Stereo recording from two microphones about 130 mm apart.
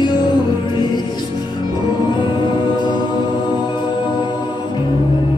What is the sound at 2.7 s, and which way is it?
Music, 35° left (ahead or behind).